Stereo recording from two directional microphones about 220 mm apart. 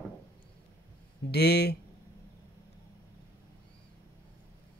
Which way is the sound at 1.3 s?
50° left (ahead or behind).